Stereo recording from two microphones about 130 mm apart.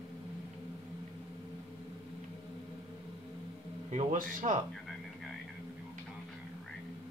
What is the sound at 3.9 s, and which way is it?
Speech, 65° right (ahead or behind).